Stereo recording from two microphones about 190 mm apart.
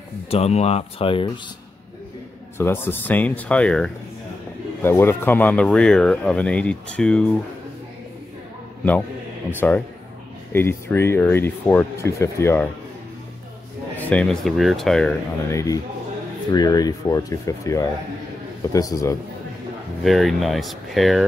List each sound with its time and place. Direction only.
0.3 s speech: 35° left (ahead or behind)
2.5 s speech: 10° left (ahead or behind)
9.6 s speech: 10° left (ahead or behind)
13.9 s speech: 10° left (ahead or behind)
15.5 s speech: 15° left (ahead or behind)
20.0 s speech: centre (ahead or behind)